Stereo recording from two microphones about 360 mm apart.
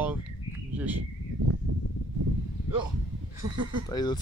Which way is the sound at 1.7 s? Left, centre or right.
Right.